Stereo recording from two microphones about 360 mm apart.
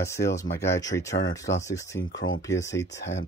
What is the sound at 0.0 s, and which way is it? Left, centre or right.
Speech, centre.